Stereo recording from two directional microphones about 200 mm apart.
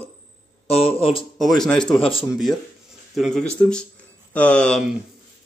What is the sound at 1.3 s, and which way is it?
Speech, centre (ahead or behind).